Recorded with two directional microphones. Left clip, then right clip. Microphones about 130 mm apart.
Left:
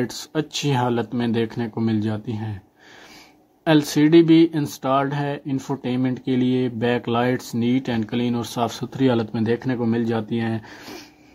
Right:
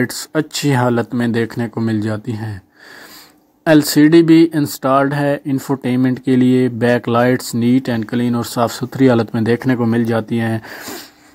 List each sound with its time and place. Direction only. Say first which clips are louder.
0.0 s speech: right 7 dB; 50° right (ahead or behind)
3.6 s speech: right 7 dB; 45° right (ahead or behind)